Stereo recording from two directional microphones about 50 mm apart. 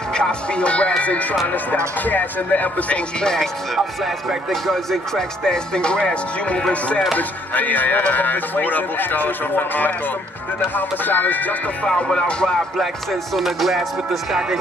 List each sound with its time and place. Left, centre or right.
0.1 s speech: centre
1.5 s speech: left
3.2 s music: centre
4.5 s speech: centre
5.4 s music: centre
7.2 s speech: left
11.9 s music: centre
13.3 s speech: centre